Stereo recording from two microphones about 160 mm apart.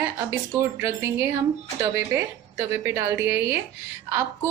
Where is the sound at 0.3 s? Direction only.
15° right (ahead or behind).